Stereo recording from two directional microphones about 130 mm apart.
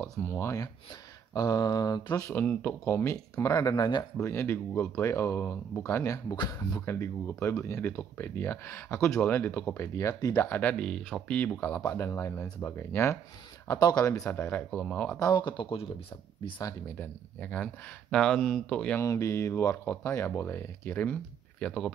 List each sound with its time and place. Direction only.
0.0 s speech: 20° left (ahead or behind)
2.3 s speech: 10° left (ahead or behind); by 4.3 s 35° left (ahead or behind)
4.3 s speech: 20° left (ahead or behind)
6.3 s speech: 35° left (ahead or behind)
6.9 s speech: 20° left (ahead or behind)
15.1 s speech: 30° left (ahead or behind)
17.0 s speech: 10° left (ahead or behind)
19.0 s speech: 20° left (ahead or behind)